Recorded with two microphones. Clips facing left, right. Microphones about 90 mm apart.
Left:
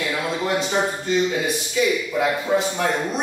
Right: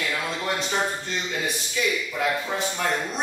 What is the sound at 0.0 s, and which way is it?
A man's voice, 10° left (ahead or behind).